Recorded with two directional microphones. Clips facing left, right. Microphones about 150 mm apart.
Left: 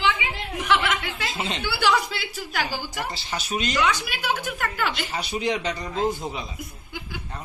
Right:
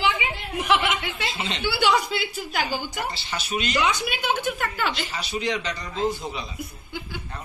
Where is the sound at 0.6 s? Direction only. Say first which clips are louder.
Right 1 dB; 5° right (ahead or behind).